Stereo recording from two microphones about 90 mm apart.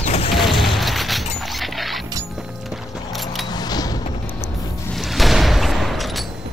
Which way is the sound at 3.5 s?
50° left (ahead or behind).